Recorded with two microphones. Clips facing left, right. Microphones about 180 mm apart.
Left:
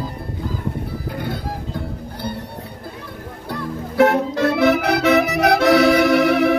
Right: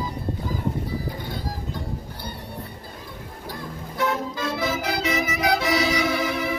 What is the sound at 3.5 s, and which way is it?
Accordion, 65° left (ahead or behind).